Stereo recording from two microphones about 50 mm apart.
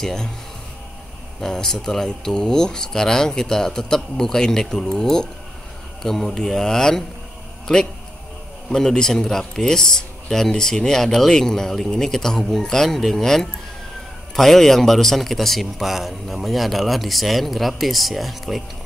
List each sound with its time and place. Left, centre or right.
0.0 s a man's voice: centre
1.4 s a man's voice: centre